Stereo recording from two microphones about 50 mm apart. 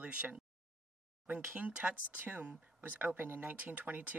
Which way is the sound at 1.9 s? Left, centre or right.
Right.